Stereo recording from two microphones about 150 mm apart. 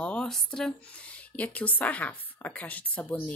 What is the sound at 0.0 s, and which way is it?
A woman's voice, 5° left (ahead or behind).